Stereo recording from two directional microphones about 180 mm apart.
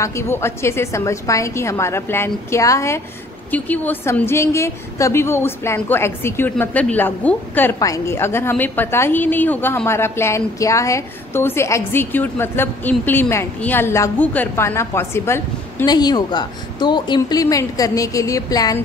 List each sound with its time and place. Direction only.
0.0 s a woman's voice: 15° left (ahead or behind)